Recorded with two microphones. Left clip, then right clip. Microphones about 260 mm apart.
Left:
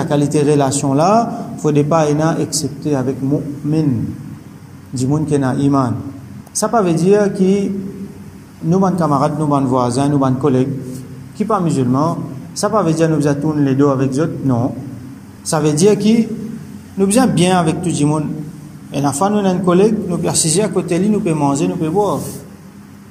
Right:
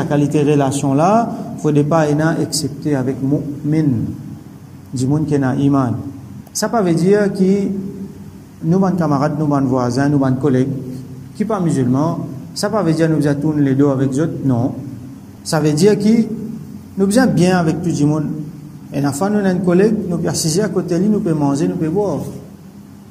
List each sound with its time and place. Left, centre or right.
0.0 s a man's voice: centre
4.9 s a man's voice: centre
8.6 s a man's voice: centre
21.9 s a man's voice: left